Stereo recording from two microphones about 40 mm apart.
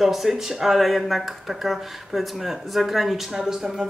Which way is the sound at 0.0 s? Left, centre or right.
Centre.